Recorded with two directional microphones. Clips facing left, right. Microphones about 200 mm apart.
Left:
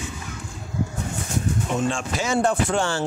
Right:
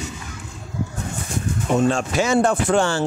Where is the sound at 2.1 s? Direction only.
65° right (ahead or behind).